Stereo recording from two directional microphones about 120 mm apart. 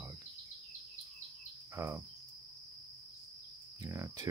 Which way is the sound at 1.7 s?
25° right (ahead or behind).